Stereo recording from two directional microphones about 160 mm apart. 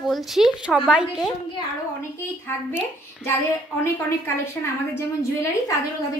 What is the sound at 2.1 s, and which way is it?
Speech, 15° left (ahead or behind).